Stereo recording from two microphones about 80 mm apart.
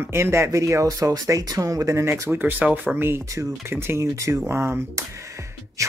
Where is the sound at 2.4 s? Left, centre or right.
Right.